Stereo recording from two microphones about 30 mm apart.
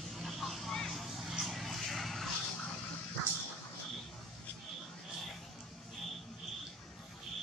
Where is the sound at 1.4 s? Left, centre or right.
Centre.